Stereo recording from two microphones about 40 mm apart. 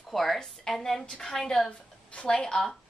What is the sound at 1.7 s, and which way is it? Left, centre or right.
Speech, left.